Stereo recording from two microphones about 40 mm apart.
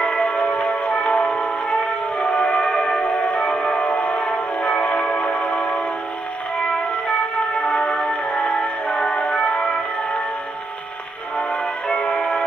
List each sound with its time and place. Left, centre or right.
0.0 s music: left
3.1 s music: left
7.6 s music: left
11.9 s music: centre